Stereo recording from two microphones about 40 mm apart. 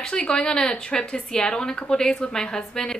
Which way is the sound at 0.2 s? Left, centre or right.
Centre.